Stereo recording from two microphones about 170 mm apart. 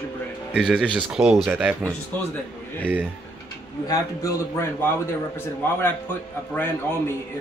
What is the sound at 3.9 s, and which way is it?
A man's voice, 20° left (ahead or behind).